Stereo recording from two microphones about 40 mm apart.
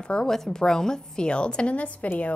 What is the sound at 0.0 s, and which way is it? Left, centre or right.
A woman's voice, left.